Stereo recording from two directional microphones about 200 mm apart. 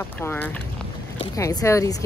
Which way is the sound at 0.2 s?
10° left (ahead or behind).